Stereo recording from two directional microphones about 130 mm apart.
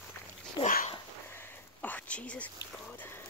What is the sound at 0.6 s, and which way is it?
Speech, 90° left.